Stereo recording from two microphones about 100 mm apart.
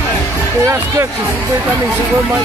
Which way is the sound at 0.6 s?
30° right (ahead or behind).